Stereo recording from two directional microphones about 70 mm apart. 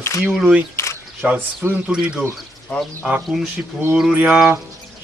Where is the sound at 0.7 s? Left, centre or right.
Left.